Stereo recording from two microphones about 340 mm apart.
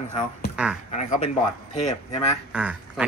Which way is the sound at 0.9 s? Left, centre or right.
Centre.